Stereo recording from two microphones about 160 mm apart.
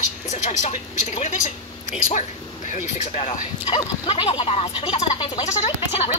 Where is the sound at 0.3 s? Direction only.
45° left (ahead or behind).